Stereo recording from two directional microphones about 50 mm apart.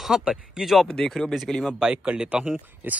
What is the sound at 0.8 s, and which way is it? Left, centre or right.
Speech, centre.